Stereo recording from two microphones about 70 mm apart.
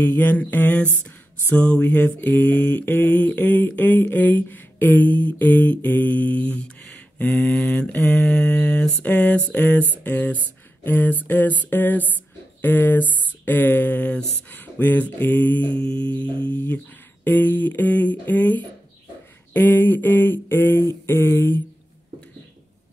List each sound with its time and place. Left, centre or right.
0.0 s mantra: left
15.8 s humming: centre
16.3 s mantra: centre
21.1 s speech: left